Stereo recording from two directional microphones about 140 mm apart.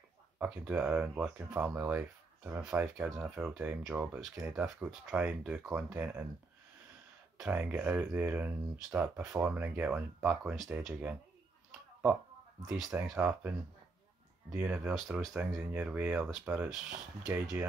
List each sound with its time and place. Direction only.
0.4 s speech: 10° right (ahead or behind)
7.3 s speech: 10° right (ahead or behind)
12.6 s speech: centre (ahead or behind)